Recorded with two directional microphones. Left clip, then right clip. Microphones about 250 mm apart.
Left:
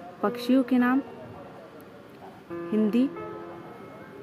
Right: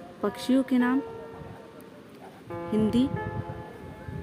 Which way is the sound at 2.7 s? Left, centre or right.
Centre.